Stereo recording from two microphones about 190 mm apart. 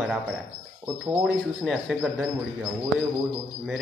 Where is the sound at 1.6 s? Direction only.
Centre (ahead or behind).